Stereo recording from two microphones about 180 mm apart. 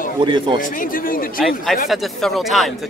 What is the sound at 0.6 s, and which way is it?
Speech, 50° left (ahead or behind).